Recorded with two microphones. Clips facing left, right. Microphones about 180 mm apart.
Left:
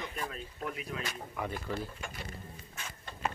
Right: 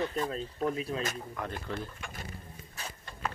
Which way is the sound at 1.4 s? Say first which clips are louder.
Left 2 dB; 5° left (ahead or behind).